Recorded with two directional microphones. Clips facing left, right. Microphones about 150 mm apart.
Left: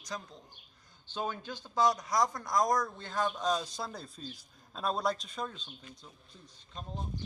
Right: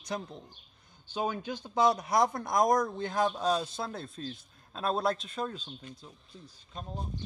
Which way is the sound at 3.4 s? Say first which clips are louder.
Right 3 dB; 5° right (ahead or behind).